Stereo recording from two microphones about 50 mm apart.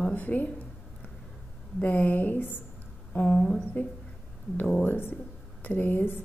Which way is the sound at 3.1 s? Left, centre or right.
Left.